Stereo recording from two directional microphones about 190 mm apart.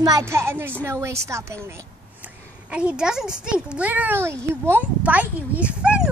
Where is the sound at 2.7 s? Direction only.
5° right (ahead or behind).